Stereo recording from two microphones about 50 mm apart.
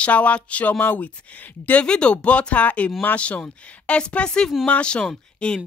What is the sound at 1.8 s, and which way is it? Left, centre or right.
Speech, centre.